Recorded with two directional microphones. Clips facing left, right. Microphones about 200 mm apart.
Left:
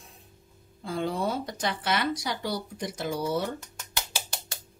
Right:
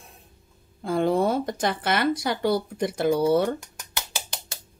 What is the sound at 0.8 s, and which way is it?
Speech, 55° right (ahead or behind).